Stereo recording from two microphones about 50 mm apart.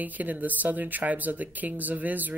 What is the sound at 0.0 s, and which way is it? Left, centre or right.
Speech, right.